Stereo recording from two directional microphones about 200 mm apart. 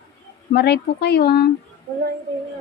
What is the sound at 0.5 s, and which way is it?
Speech, 55° left (ahead or behind).